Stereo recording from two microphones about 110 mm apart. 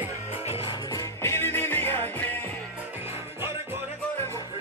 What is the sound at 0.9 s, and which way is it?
Music, 25° left (ahead or behind).